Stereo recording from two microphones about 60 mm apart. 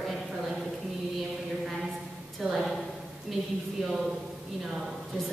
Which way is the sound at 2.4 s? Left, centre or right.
Centre.